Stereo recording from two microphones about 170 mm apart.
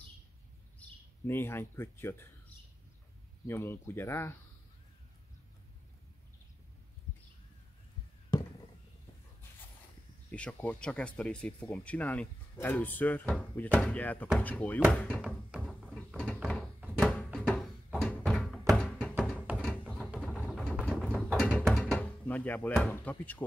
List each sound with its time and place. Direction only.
0.7 s speech: 15° left (ahead or behind)
3.4 s speech: 15° left (ahead or behind)
8.3 s a sound: 25° left (ahead or behind)
10.3 s speech: 5° left (ahead or behind)
15.2 s a sound: 5° right (ahead or behind)
16.1 s door: 5° left (ahead or behind)
16.9 s thunk: centre (ahead or behind)
18.7 s music: 5° left (ahead or behind)
19.2 s music: 5° right (ahead or behind)
20.1 s a sound: centre (ahead or behind)
20.9 s door: centre (ahead or behind)